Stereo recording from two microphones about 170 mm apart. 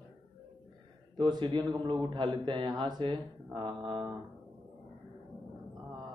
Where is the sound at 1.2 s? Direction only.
25° right (ahead or behind).